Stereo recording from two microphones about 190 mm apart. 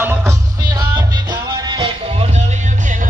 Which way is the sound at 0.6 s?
20° right (ahead or behind).